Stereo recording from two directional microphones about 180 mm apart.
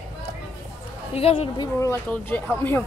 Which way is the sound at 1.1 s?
35° left (ahead or behind).